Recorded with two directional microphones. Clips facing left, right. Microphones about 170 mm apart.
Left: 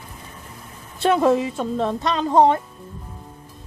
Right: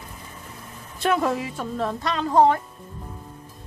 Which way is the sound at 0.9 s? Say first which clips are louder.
Left 5 dB; 25° left (ahead or behind).